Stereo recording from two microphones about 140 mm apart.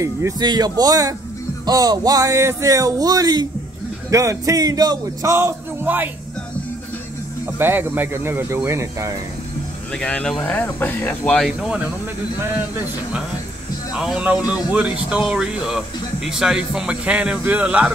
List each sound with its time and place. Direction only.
0.0 s a man's voice: 25° right (ahead or behind)
7.5 s speech: 15° right (ahead or behind)
9.9 s speech: 5° left (ahead or behind)
13.9 s speech: 5° right (ahead or behind)